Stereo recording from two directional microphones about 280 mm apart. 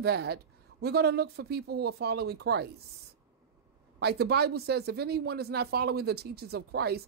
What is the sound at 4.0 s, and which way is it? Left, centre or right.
Speech, right.